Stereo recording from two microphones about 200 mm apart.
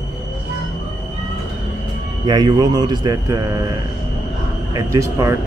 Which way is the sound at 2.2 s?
20° right (ahead or behind).